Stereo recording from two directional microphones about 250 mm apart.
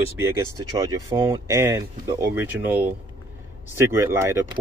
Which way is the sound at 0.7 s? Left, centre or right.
Centre.